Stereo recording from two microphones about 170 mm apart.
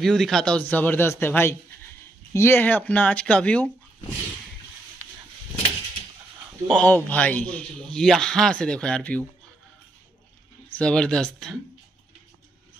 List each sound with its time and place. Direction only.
0.0 s speech: centre (ahead or behind)
6.7 s a man's voice: 10° left (ahead or behind)
10.8 s a man's voice: 5° left (ahead or behind)